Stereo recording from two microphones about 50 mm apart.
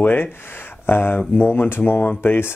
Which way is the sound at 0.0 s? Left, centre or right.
Left.